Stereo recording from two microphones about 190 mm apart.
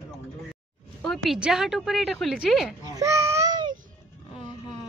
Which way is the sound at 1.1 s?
Centre (ahead or behind).